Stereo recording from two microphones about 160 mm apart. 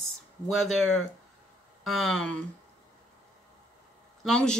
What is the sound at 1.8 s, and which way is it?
Speech, centre (ahead or behind).